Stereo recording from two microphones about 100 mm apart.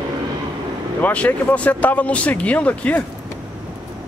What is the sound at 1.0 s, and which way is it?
Speech, 15° left (ahead or behind).